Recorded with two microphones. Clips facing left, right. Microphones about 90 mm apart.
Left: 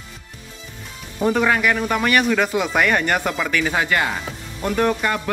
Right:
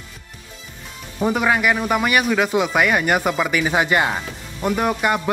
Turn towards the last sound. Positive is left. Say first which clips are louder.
# even
turn(degrees=-10)  # may be behind; listen again after turning